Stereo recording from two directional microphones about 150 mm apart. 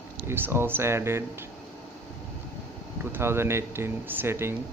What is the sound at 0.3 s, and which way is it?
Speech, 15° right (ahead or behind).